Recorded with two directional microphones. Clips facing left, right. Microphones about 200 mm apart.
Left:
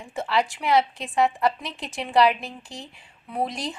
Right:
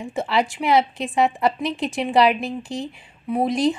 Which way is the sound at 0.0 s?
20° right (ahead or behind).